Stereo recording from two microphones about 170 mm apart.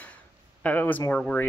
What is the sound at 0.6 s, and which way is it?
Speech, 10° left (ahead or behind).